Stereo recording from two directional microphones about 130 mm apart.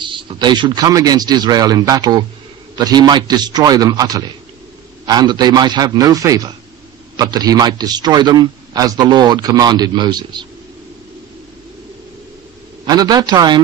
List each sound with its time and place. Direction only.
0.0 s a man's voice: 35° right (ahead or behind)
12.8 s a man's voice: 30° right (ahead or behind)